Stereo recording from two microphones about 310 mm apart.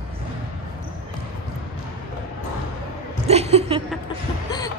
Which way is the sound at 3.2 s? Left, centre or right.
Centre.